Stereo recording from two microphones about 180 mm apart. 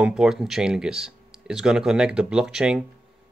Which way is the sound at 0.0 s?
5° right (ahead or behind).